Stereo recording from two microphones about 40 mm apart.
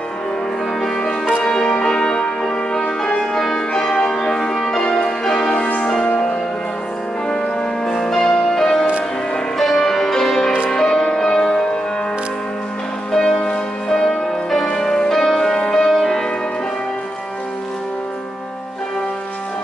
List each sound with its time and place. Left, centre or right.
0.7 s music: centre
3.2 s change ringing: centre
4.8 s music: centre
7.2 s music: centre
13.1 s music: centre